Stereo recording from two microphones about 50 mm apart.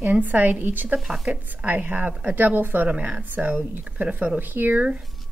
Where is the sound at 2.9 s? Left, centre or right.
Right.